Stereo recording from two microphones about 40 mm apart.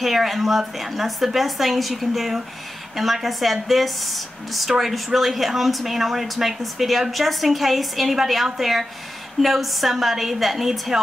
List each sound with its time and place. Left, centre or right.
0.0 s speech: centre